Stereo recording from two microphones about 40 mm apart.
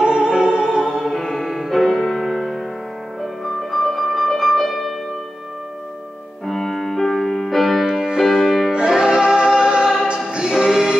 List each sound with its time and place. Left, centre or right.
0.0 s music: centre
0.8 s music: centre
6.4 s music: centre
8.0 s music: centre
8.3 s music: centre
8.7 s music: centre
10.0 s choir: right